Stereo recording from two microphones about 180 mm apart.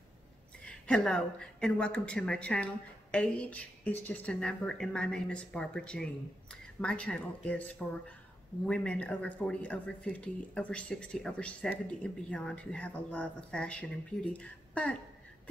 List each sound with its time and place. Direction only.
0.7 s a woman's voice: 5° left (ahead or behind)